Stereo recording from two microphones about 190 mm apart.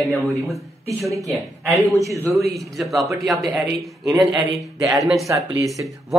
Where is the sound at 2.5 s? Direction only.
Centre (ahead or behind).